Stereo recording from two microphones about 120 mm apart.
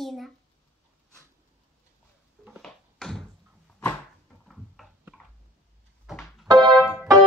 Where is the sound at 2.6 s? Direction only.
5° left (ahead or behind).